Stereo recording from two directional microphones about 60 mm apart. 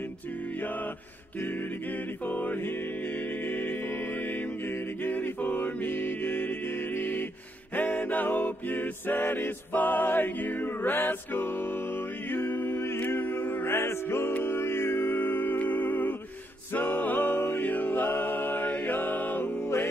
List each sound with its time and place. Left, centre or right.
1.4 s music: left
19.6 s music: left